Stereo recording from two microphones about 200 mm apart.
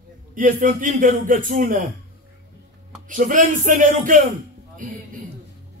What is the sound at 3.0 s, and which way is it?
Speech, 40° right (ahead or behind).